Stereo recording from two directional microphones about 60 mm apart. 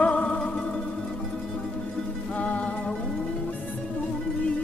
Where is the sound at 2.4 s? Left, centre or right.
Centre.